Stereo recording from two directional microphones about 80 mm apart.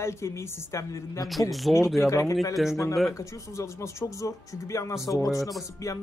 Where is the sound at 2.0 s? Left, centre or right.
Left.